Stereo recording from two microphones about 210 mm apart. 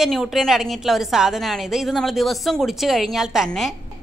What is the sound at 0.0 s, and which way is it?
A woman's voice, centre (ahead or behind).